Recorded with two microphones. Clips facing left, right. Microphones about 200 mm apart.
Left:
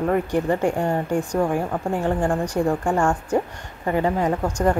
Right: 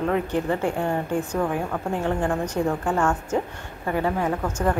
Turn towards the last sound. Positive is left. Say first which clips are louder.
# left 3 dB
turn(degrees=15)  # may be behind; listen again after turning